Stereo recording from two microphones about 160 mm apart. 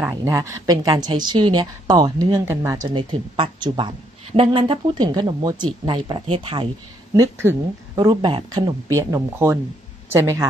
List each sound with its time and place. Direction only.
0.1 s a woman's voice: 20° right (ahead or behind)
2.9 s a woman's voice: 30° right (ahead or behind)
7.2 s a woman's voice: 20° right (ahead or behind)